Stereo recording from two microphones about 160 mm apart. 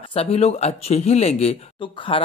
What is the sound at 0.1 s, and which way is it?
Speech, 40° left (ahead or behind).